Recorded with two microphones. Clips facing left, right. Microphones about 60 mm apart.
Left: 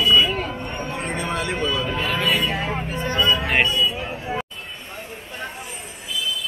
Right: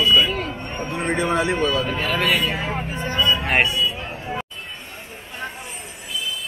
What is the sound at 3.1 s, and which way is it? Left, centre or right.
Music, centre.